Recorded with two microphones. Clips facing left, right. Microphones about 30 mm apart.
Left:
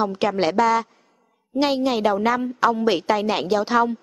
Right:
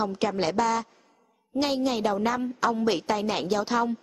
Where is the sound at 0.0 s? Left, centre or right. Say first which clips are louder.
Left 5 dB; left.